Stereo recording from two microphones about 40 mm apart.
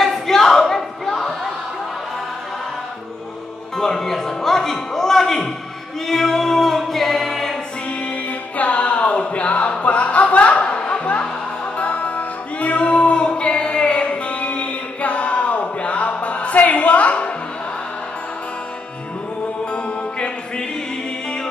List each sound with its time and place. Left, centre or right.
0.0 s a sound: centre
3.7 s music: centre
6.0 s singing: centre
8.0 s music: left
19.6 s music: left